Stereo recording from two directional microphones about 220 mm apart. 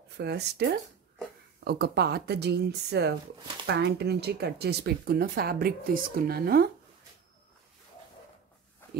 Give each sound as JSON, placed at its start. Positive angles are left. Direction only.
{"t": 0.2, "sound": "speech", "side_deg": -50}